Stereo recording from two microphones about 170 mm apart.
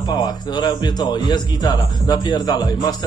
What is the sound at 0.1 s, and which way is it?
Speech, 25° left (ahead or behind).